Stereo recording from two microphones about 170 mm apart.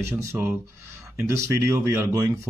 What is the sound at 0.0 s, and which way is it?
Speech, 15° right (ahead or behind).